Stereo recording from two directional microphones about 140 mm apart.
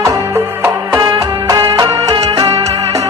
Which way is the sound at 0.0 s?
25° right (ahead or behind).